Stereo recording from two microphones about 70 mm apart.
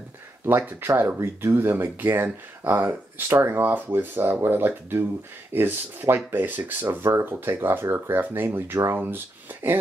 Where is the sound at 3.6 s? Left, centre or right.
Right.